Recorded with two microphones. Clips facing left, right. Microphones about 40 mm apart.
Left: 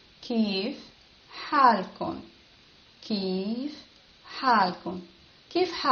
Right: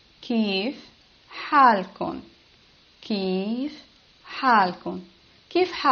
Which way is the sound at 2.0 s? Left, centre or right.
Right.